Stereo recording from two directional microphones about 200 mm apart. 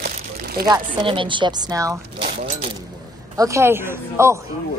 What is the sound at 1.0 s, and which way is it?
Speech, 25° right (ahead or behind).